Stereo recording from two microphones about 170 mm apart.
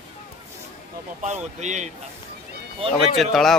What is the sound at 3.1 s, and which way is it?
Speech, centre (ahead or behind).